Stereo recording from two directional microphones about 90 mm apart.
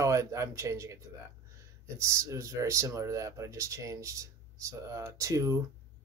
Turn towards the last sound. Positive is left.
turn(degrees=-35)  # may be behind; listen again after turning